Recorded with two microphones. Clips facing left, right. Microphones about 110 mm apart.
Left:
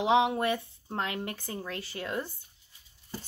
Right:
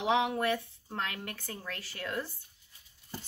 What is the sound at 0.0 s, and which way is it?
A woman's voice, 25° left (ahead or behind).